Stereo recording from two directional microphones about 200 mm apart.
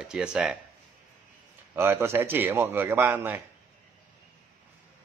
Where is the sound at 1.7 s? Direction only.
10° right (ahead or behind).